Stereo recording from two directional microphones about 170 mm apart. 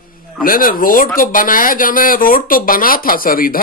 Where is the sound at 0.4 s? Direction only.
55° left (ahead or behind).